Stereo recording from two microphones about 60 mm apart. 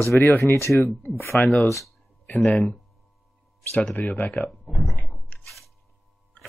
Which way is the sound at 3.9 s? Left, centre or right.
Left.